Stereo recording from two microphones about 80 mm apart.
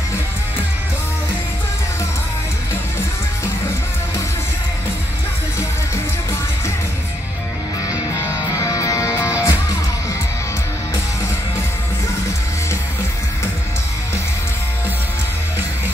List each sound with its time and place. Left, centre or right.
7.9 s music: left